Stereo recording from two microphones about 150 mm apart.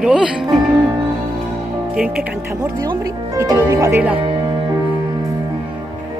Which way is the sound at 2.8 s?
25° right (ahead or behind).